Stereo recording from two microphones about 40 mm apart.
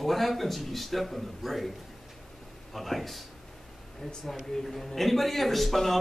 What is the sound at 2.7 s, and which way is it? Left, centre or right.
A man's voice, centre.